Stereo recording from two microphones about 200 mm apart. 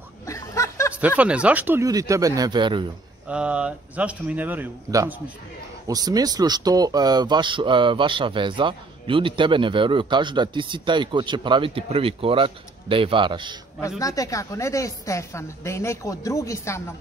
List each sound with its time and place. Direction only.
0.3 s snicker: 15° left (ahead or behind)
1.0 s speech: 5° right (ahead or behind); by 2.9 s 25° right (ahead or behind)
3.3 s speech: 5° right (ahead or behind); by 13.6 s 25° right (ahead or behind)
13.7 s a woman's voice: 15° left (ahead or behind)